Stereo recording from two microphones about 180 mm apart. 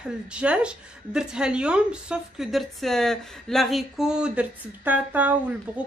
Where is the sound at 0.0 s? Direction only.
5° right (ahead or behind).